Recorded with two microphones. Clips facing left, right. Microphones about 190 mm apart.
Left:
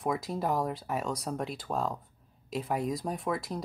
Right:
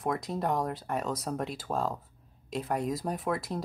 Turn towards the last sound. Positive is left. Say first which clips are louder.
# right 1 dB
turn(degrees=0)  # may be behind; listen again after turning